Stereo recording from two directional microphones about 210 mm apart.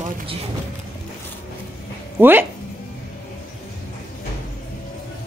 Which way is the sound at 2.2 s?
10° right (ahead or behind).